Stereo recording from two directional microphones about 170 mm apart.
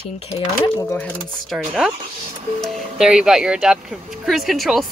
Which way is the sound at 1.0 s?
Centre (ahead or behind).